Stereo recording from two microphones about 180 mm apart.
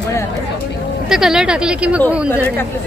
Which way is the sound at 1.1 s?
Centre (ahead or behind).